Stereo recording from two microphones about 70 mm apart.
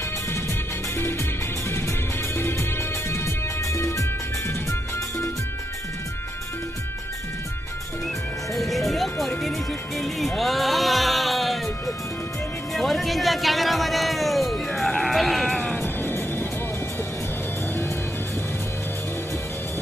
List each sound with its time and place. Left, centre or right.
2.3 s music: left
3.1 s music: left
8.5 s music: centre
12.7 s music: centre
15.8 s music: left